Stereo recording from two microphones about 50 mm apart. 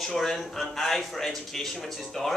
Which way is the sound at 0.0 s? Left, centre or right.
Centre.